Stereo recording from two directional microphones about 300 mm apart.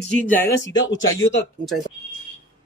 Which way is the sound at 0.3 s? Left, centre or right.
Centre.